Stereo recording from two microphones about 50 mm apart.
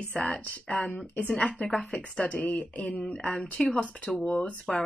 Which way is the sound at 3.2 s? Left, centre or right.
Left.